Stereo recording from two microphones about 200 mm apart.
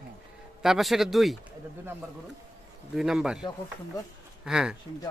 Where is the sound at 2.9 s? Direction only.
5° right (ahead or behind).